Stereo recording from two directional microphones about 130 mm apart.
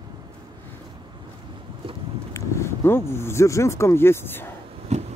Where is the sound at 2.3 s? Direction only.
20° left (ahead or behind).